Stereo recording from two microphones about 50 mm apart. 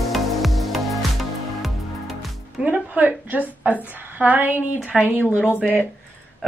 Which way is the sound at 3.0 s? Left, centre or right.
Right.